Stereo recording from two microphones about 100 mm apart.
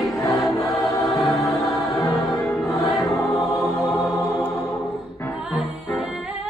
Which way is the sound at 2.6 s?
30° left (ahead or behind).